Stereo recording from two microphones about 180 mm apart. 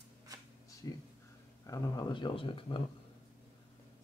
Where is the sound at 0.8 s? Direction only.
20° left (ahead or behind).